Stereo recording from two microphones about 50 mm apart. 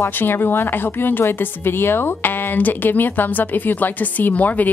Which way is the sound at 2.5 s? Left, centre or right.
Left.